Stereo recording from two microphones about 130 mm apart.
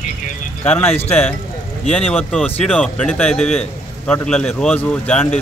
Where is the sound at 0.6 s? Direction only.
15° left (ahead or behind).